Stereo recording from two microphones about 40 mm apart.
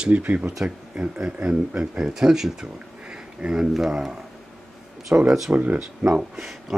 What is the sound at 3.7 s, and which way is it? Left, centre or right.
Speech, centre.